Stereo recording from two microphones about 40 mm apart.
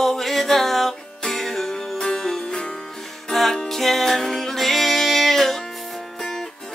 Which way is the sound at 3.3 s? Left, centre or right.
Centre.